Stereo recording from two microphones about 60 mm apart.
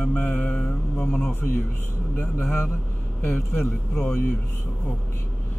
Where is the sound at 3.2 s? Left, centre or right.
Left.